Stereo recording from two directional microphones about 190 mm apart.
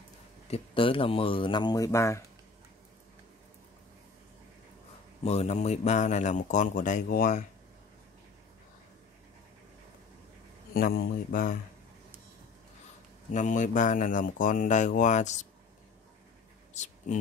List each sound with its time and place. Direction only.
0.5 s speech: 30° left (ahead or behind)
5.2 s speech: 35° left (ahead or behind)
10.7 s speech: 50° left (ahead or behind)
13.3 s speech: 40° left (ahead or behind)
16.7 s a sound: 40° left (ahead or behind)